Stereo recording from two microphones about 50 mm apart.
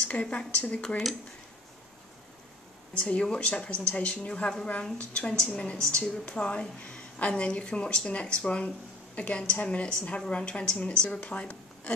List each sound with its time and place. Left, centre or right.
0.0 s a woman's voice: left
0.8 s speech: centre
2.9 s a woman's voice: left